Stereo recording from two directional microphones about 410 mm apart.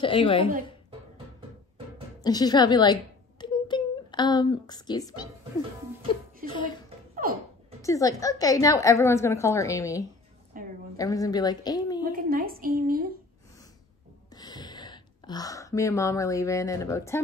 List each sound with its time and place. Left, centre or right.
0.0 s a woman's voice: centre
2.2 s a woman's voice: centre
6.4 s speech: centre
7.8 s a woman's voice: centre
10.5 s a sound: centre
11.0 s a woman's voice: centre
12.1 s a sound: right
14.3 s speech: centre